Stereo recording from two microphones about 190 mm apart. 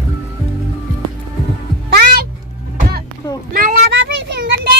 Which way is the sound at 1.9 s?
55° right (ahead or behind).